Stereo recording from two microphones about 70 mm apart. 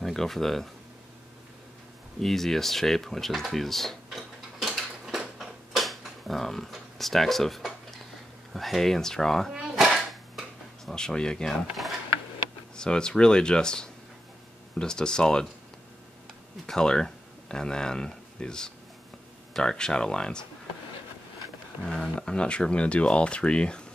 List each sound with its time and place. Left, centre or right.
0.0 s speech: centre
2.1 s a sound: centre
8.5 s speech: centre
9.5 s dog: centre
10.9 s speech: centre
12.7 s speech: centre
16.6 s speech: centre
22.0 s speech: centre